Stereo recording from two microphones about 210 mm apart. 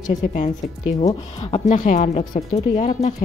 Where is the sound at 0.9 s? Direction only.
30° left (ahead or behind).